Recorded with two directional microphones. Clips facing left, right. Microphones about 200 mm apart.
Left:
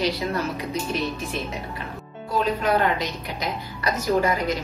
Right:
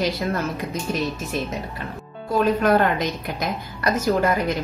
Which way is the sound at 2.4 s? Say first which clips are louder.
Right 4 dB; 50° right (ahead or behind).